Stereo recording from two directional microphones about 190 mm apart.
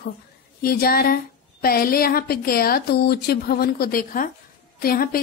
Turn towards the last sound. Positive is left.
turn(degrees=50)  # may be behind; listen again after turning